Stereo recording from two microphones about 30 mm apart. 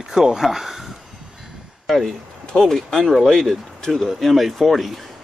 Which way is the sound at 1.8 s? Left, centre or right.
Centre.